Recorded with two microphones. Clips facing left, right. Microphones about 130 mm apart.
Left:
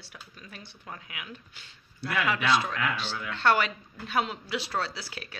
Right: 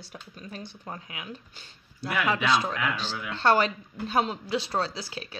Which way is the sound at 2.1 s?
15° right (ahead or behind).